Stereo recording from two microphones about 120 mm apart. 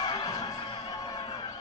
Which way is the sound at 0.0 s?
30° left (ahead or behind).